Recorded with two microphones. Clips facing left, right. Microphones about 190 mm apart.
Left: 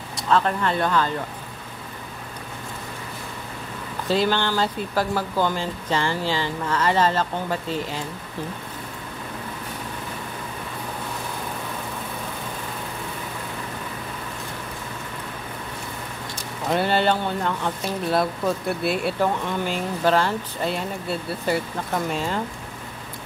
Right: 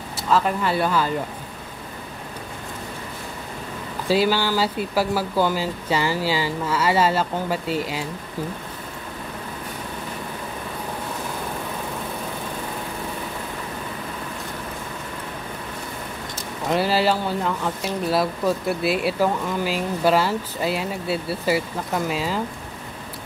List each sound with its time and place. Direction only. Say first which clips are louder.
0.3 s speech: even; 5° right (ahead or behind)
4.1 s speech: right 2 dB; 5° right (ahead or behind)
16.7 s speech: right 1 dB; 5° right (ahead or behind)